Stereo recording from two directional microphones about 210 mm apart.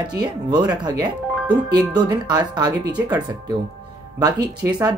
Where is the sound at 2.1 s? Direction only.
20° right (ahead or behind).